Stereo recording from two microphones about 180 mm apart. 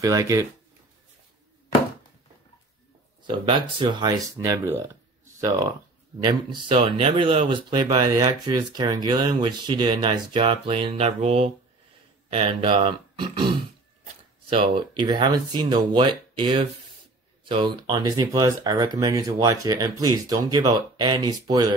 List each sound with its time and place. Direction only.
0.0 s speech: 20° right (ahead or behind)
3.3 s speech: 25° right (ahead or behind)